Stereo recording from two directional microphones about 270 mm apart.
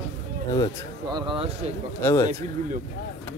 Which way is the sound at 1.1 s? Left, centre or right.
Centre.